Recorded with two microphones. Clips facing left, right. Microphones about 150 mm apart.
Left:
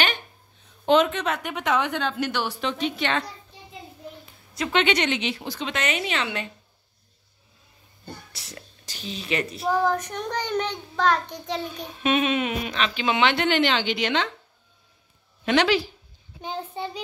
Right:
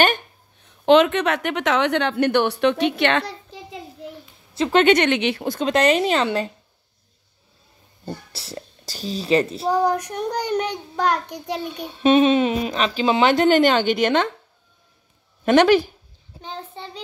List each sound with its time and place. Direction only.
0.8 s a woman's voice: 75° right (ahead or behind)
4.7 s a woman's voice: 50° right (ahead or behind)
8.0 s speech: 30° right (ahead or behind)
9.7 s a child's voice: 15° right (ahead or behind)
11.9 s speech: 30° right (ahead or behind); by 14.3 s 50° right (ahead or behind)
15.4 s a woman's voice: 50° right (ahead or behind)
16.3 s a child's voice: 15° left (ahead or behind)